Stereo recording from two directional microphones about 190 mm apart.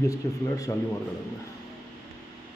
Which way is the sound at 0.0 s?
15° left (ahead or behind).